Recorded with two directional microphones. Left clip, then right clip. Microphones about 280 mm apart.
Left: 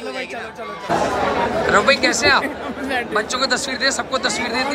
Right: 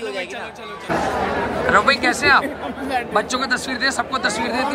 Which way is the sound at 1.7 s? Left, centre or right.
Centre.